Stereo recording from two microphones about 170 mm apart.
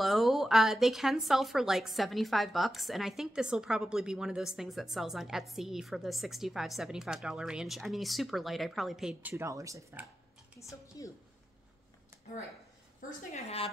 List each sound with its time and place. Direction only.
0.0 s speech: centre (ahead or behind)
9.3 s speech: 20° right (ahead or behind)
10.9 s a sound: 20° left (ahead or behind)
13.3 s a woman's voice: 35° left (ahead or behind)